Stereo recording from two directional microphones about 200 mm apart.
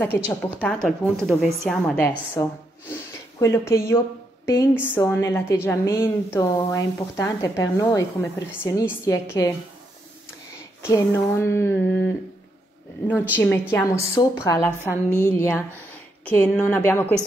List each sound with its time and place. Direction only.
0.1 s a woman's voice: 50° left (ahead or behind)
0.8 s speech: centre (ahead or behind)
10.8 s speech: 10° left (ahead or behind)
13.4 s speech: 10° left (ahead or behind)
14.8 s a woman's voice: 10° right (ahead or behind)
15.2 s speech: 10° left (ahead or behind)